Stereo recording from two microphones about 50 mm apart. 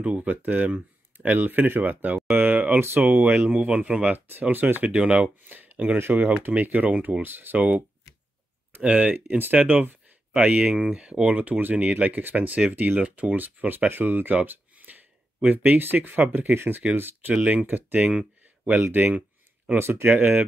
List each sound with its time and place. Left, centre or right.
0.0 s speech: right
0.4 s speech: right
4.3 s speech: right
5.4 s a sound: right
5.9 s speech: right
8.8 s speech: right
11.2 s speech: right
12.7 s speech: right
17.4 s speech: right